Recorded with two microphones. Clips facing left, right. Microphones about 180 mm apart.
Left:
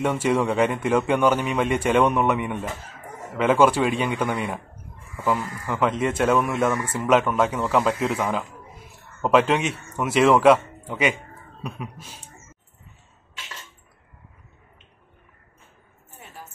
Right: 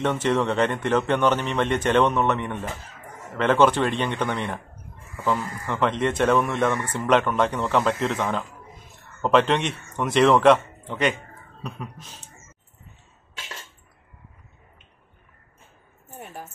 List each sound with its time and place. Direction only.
0.0 s a man's voice: 10° left (ahead or behind)